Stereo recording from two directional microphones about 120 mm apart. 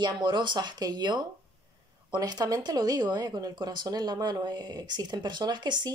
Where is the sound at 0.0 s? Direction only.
40° right (ahead or behind).